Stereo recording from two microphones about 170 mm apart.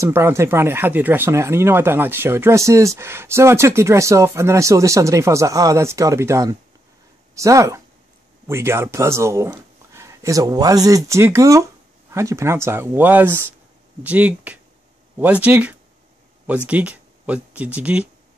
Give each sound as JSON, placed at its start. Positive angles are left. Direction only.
{"t": 0.0, "sound": "speech", "side_deg": -15}